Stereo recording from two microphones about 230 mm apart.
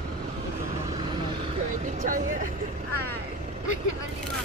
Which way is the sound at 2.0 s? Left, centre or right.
Right.